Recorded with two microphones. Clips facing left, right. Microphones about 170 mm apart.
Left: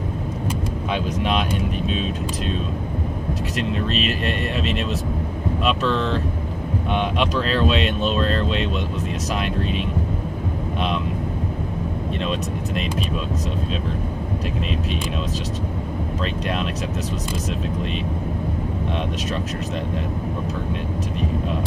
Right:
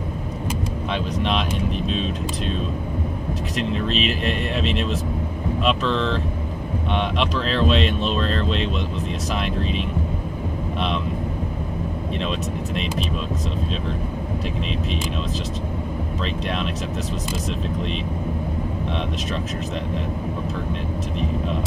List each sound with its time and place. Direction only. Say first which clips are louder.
1.9 s speech: even; 5° left (ahead or behind)
3.9 s speech: even; centre (ahead or behind)
8.2 s speech: left 2 dB; 40° left (ahead or behind)